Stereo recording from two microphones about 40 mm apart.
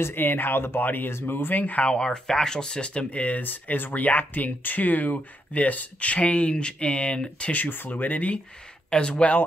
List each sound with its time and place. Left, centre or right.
0.0 s speech: left
1.6 s speech: left
1.9 s speech: centre
3.1 s speech: left
7.5 s speech: left
8.9 s speech: left